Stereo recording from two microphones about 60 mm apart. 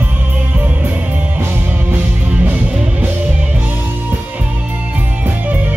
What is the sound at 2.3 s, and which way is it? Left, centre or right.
Music, right.